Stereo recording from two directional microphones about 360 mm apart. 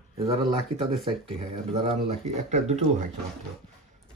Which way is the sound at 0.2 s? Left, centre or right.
Centre.